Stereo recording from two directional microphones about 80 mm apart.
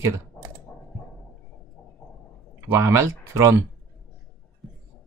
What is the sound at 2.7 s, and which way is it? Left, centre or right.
Speech, right.